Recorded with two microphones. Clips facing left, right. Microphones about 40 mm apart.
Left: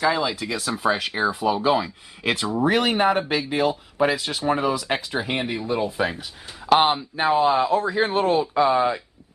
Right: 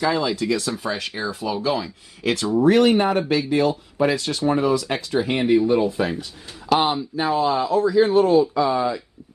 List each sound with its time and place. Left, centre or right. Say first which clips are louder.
0.0 s speech: right 1 dB; centre
5.2 s speech: right 8 dB; centre
6.6 s a man's voice: left 2 dB; left